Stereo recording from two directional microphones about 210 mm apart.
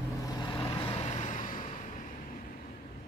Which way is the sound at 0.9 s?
30° left (ahead or behind).